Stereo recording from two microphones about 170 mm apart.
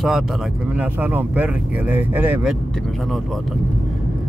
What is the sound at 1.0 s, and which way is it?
Speech, 10° right (ahead or behind).